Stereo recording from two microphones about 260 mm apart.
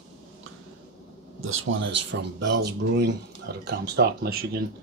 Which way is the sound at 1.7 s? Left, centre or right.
Right.